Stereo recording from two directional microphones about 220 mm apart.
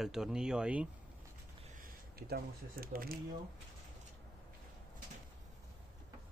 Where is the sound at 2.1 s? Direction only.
45° right (ahead or behind).